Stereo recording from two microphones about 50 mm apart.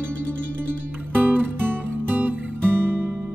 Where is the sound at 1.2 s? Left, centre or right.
Right.